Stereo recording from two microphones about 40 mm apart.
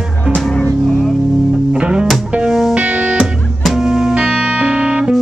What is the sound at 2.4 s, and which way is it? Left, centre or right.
Music, centre.